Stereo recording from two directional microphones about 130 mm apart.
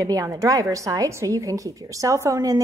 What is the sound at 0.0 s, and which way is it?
A woman's voice, 25° right (ahead or behind).